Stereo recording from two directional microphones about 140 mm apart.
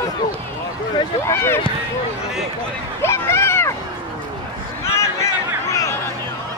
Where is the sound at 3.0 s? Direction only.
15° left (ahead or behind).